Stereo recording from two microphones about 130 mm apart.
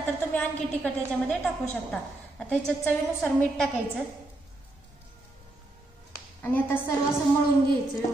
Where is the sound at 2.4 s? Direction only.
5° left (ahead or behind).